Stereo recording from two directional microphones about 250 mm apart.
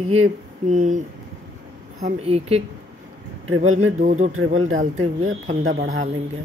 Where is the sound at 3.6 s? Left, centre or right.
Right.